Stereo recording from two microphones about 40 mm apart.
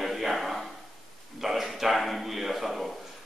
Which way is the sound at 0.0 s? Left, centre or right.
Centre.